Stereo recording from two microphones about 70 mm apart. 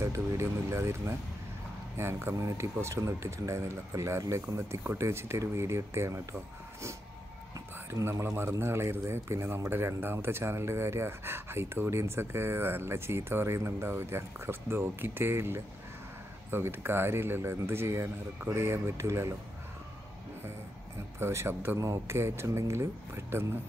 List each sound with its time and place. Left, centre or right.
0.0 s speech: right
4.2 s speech: right
4.6 s speech: right
7.9 s speech: right
21.2 s speech: right
21.7 s speech: right